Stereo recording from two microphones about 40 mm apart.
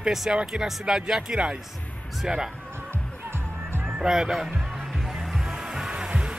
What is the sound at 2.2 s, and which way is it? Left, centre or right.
Speech, centre.